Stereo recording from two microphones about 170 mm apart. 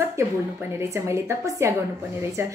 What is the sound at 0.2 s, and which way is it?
A woman's voice, 15° right (ahead or behind).